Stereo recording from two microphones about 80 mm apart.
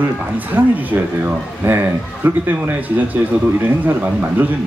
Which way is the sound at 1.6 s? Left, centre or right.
Right.